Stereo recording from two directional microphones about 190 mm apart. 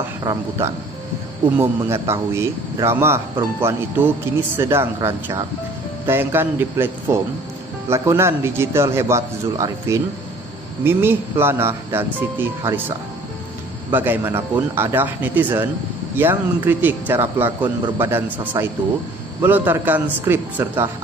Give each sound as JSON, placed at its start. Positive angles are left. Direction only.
{"t": 0.2, "sound": "speech", "side_deg": -15}
{"t": 1.8, "sound": "speech", "side_deg": -15}
{"t": 13.9, "sound": "speech", "side_deg": -10}